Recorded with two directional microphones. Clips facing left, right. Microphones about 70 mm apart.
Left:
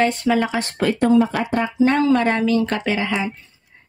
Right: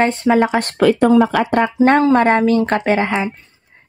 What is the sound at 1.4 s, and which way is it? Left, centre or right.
Speech, right.